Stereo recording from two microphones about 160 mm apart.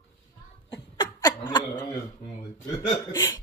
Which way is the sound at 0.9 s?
25° left (ahead or behind).